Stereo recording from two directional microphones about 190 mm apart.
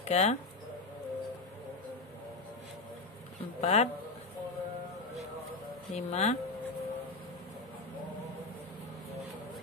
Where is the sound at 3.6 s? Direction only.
35° left (ahead or behind).